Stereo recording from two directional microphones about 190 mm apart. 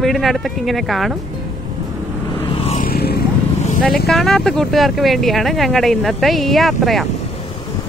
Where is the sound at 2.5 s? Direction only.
30° left (ahead or behind).